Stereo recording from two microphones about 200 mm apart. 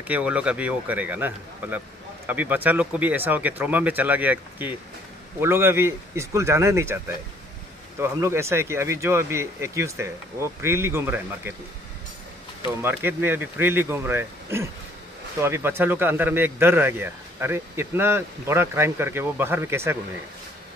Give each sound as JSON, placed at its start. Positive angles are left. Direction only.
{"t": 0.1, "sound": "speech", "side_deg": -5}
{"t": 8.0, "sound": "speech", "side_deg": -15}
{"t": 12.8, "sound": "speech", "side_deg": -10}